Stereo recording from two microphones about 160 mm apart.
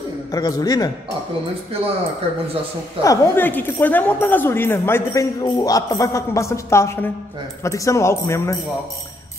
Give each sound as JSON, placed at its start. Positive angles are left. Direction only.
{"t": 0.3, "sound": "speech", "side_deg": 25}
{"t": 3.0, "sound": "a woman's voice", "side_deg": 15}